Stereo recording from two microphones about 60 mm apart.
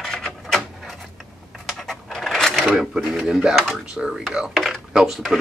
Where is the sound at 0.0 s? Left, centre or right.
Centre.